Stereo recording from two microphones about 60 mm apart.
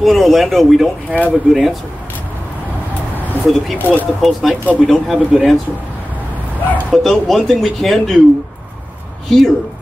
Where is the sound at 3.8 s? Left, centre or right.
Left.